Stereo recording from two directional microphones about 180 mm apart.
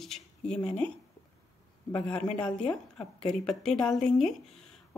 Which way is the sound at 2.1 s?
30° left (ahead or behind).